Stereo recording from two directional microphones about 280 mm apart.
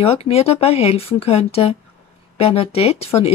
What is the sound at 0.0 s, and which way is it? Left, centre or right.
Speech, left.